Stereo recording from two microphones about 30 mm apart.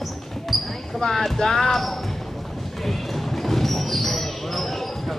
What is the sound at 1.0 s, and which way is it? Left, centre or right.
Music, centre.